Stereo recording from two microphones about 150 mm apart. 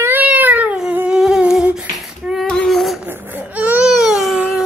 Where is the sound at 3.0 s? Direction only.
10° right (ahead or behind).